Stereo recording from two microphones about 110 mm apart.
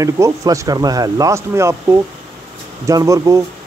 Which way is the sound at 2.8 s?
30° right (ahead or behind).